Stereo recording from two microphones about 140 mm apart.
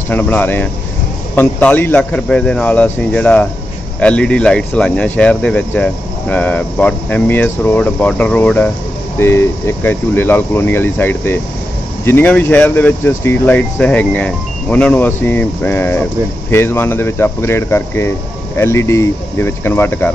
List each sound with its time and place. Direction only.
0.1 s speech: 10° left (ahead or behind)